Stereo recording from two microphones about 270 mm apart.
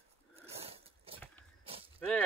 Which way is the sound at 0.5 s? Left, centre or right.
Right.